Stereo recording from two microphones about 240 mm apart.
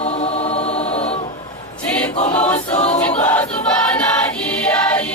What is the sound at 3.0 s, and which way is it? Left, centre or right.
Choir, centre.